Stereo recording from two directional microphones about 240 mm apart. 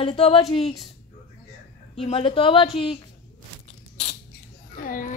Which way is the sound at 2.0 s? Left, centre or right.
Left.